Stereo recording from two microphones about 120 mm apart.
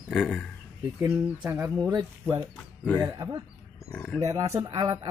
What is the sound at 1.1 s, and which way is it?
Speech, 20° right (ahead or behind).